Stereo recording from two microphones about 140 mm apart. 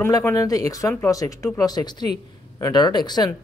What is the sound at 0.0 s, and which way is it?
A man's voice, 20° left (ahead or behind).